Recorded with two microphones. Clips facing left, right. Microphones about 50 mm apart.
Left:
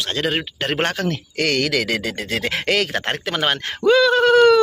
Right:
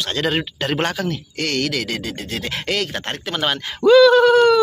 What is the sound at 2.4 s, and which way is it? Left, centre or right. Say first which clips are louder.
Speech: left 3 dB; left.